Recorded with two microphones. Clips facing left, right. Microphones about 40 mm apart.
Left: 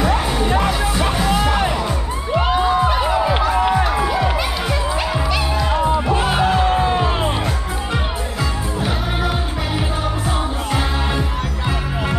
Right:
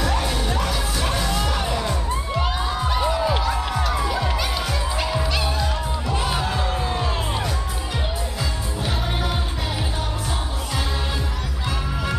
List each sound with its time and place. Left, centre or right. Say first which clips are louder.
0.0 s music: left 5 dB; left